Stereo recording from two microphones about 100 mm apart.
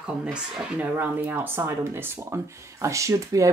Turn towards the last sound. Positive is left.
turn(degrees=-35)  # may be behind; listen again after turning